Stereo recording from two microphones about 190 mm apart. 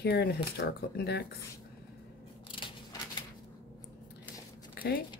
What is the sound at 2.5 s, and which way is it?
Scissors, 25° left (ahead or behind).